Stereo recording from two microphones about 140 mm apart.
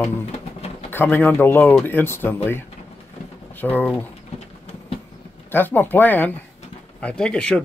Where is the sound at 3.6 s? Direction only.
10° left (ahead or behind).